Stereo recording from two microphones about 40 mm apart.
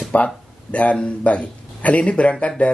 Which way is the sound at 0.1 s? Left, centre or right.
Left.